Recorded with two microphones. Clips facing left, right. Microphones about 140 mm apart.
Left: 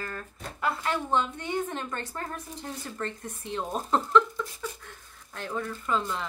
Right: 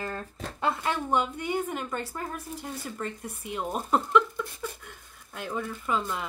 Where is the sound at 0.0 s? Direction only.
25° right (ahead or behind).